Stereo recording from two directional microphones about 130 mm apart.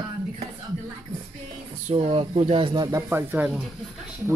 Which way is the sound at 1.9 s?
50° right (ahead or behind).